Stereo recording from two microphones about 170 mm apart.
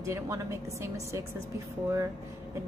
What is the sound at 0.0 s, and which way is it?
A woman's voice, 15° right (ahead or behind).